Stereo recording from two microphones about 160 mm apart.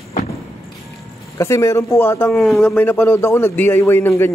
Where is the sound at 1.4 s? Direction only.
20° left (ahead or behind).